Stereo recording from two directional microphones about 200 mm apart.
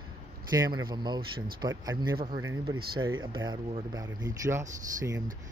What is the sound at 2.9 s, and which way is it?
Speech, 85° right.